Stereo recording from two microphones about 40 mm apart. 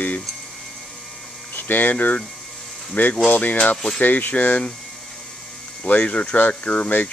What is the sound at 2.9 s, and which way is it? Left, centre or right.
Speech, left.